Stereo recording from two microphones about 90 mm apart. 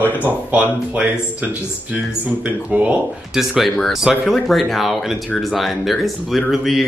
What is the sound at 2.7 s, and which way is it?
Speech, 15° right (ahead or behind).